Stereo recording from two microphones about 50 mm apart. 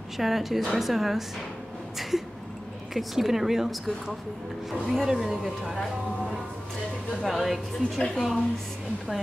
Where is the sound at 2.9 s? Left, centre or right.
Centre.